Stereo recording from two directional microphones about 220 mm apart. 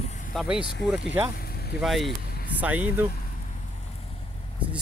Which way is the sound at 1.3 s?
45° left (ahead or behind).